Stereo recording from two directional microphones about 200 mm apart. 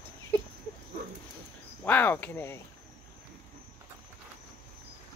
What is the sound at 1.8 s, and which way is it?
Speech, 10° left (ahead or behind).